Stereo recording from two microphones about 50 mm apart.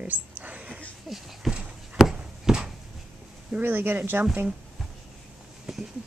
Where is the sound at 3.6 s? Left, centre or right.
Right.